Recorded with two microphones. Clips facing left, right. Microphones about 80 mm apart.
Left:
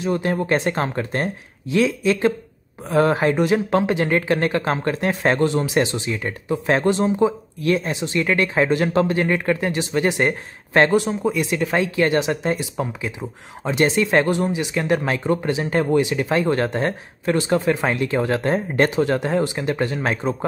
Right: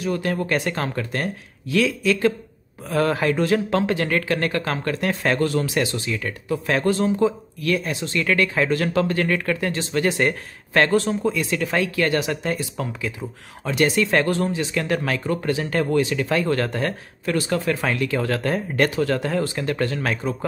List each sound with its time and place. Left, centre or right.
0.0 s speech: left